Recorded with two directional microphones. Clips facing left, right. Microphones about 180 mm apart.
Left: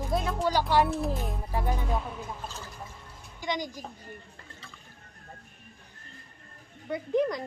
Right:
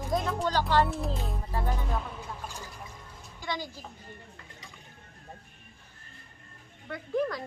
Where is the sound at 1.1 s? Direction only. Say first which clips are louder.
Left 2 dB; 15° left (ahead or behind).